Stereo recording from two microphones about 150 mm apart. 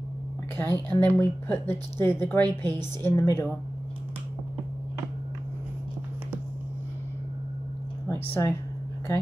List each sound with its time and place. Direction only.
0.6 s speech: 15° left (ahead or behind)
8.1 s speech: 15° left (ahead or behind)